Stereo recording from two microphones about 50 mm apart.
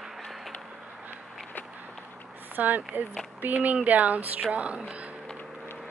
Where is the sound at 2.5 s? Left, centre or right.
Right.